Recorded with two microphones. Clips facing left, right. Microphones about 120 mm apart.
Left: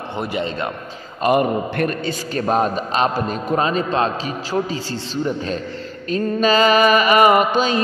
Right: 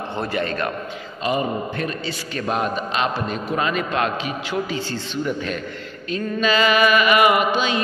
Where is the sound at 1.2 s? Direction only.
55° left (ahead or behind).